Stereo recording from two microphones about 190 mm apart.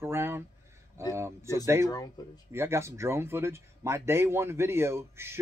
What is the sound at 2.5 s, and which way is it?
Speech, 15° right (ahead or behind).